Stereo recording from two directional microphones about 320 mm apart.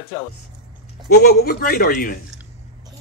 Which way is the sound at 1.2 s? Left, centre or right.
Left.